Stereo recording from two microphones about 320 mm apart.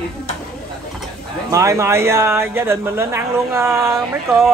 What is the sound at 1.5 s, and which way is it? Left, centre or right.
Speech, centre.